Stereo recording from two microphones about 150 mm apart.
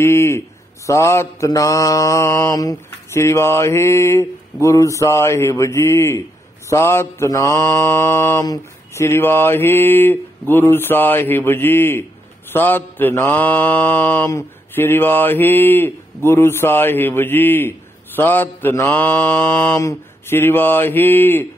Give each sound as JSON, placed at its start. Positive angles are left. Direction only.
{"t": 0.0, "sound": "mantra", "side_deg": 15}